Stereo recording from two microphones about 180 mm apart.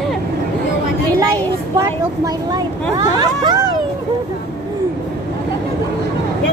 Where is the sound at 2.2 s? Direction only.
20° right (ahead or behind).